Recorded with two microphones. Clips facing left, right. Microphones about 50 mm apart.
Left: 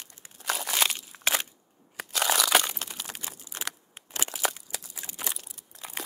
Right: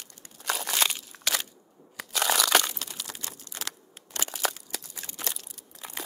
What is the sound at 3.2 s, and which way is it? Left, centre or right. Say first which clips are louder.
Crunch: left 1 dB; centre.